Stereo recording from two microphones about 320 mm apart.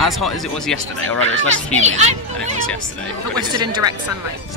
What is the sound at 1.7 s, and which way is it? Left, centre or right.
Speech, right.